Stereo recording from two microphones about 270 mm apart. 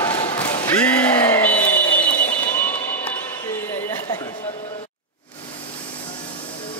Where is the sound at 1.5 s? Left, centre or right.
Centre.